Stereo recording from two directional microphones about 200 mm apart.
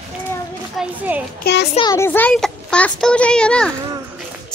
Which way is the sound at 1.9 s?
10° left (ahead or behind).